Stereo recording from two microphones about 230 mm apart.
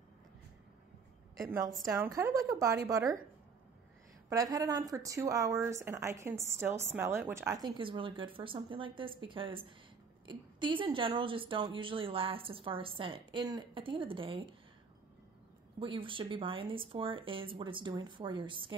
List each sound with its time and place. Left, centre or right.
1.4 s speech: centre
4.3 s a woman's voice: centre
15.8 s a woman's voice: right